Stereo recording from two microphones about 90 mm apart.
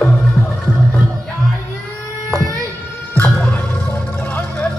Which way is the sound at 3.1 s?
20° left (ahead or behind).